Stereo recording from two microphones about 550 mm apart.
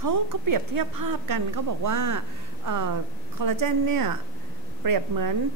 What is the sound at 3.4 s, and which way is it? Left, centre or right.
A woman's voice, right.